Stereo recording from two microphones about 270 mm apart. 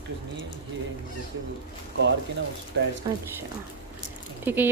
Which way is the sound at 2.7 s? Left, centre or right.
Right.